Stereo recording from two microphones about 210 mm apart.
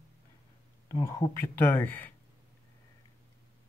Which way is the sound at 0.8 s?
15° left (ahead or behind).